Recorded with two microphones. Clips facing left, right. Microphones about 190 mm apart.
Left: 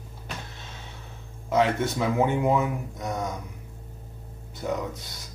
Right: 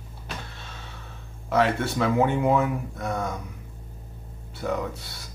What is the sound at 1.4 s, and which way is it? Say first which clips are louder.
Speech: even; 20° left (ahead or behind).